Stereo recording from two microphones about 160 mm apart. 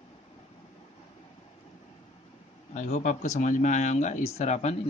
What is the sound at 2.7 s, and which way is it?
Speech, 50° left (ahead or behind).